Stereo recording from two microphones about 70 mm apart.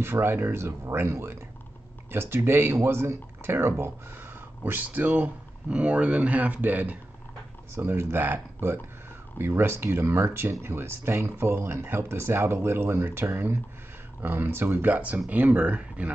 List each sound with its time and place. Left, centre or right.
0.0 s speech: right
4.6 s speech: right
7.7 s speech: right; by 16.1 s centre